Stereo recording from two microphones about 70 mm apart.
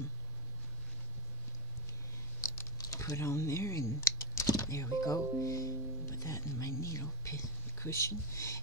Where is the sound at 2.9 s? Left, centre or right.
Left.